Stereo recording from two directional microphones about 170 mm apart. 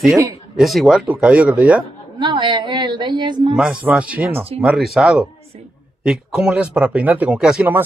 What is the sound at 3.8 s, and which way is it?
Speech, 10° right (ahead or behind).